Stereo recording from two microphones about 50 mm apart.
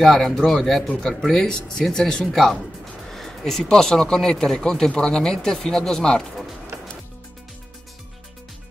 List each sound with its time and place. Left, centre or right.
0.0 s speech: centre